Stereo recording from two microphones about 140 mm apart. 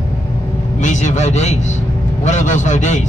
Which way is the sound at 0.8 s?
55° left (ahead or behind).